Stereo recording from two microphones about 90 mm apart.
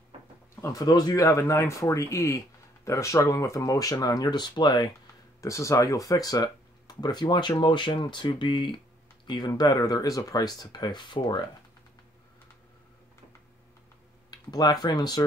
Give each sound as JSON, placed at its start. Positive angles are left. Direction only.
{"t": 0.6, "sound": "speech", "side_deg": 35}
{"t": 5.4, "sound": "speech", "side_deg": 35}
{"t": 9.6, "sound": "speech", "side_deg": 50}
{"t": 14.3, "sound": "speech", "side_deg": 50}